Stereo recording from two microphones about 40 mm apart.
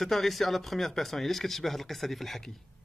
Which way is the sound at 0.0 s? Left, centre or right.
Centre.